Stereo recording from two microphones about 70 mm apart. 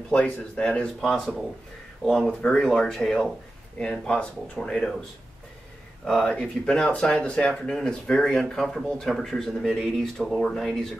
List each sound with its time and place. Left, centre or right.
0.1 s speech: centre
1.0 s speech: centre
6.2 s speech: centre